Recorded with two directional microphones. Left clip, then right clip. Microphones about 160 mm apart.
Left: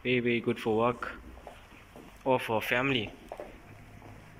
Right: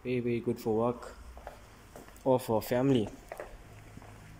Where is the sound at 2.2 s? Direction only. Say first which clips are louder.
Even; 30° right (ahead or behind).